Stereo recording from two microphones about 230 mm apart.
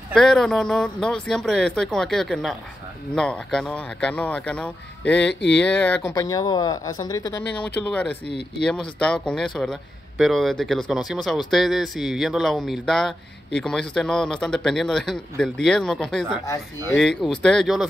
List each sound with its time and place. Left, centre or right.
0.1 s a man's voice: centre
5.3 s speech: left
5.6 s speech: centre
8.5 s a man's voice: centre
16.4 s speech: centre
16.9 s a man's voice: centre